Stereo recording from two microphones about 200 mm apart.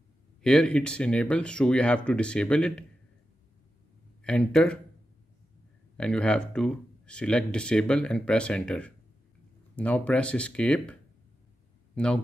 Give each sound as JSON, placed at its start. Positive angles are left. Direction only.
{"t": 0.4, "sound": "speech", "side_deg": 5}
{"t": 4.2, "sound": "speech", "side_deg": 5}
{"t": 5.9, "sound": "speech", "side_deg": 5}